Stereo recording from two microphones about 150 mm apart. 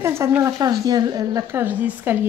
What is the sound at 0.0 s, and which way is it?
A woman's voice, 15° right (ahead or behind).